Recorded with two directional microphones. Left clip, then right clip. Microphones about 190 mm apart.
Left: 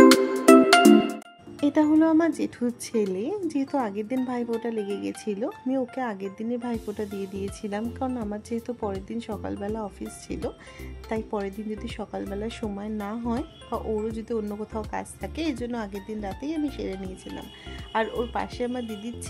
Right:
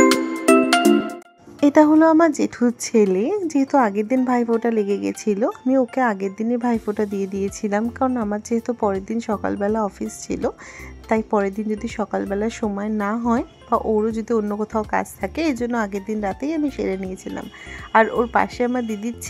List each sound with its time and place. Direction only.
0.0 s music: centre (ahead or behind)
1.6 s a woman's voice: 25° right (ahead or behind)
17.9 s speech: 20° right (ahead or behind)